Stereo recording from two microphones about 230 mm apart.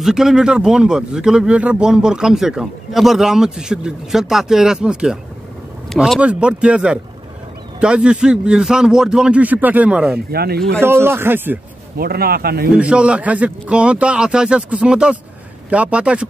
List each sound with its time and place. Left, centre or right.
0.0 s speech: centre
10.1 s speech: right
10.8 s a man's voice: centre
12.0 s speech: right
12.7 s speech: centre